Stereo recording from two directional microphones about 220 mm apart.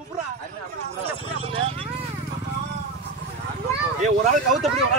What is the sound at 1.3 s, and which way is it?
Vehicle, 25° right (ahead or behind).